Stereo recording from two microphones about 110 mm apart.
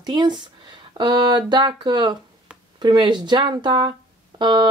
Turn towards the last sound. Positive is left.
turn(degrees=-40)  # may be behind; listen again after turning